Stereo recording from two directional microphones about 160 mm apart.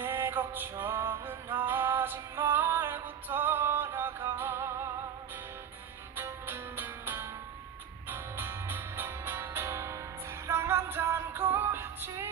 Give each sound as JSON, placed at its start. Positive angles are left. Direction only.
{"t": 0.0, "sound": "music", "side_deg": -10}
{"t": 6.1, "sound": "music", "side_deg": -15}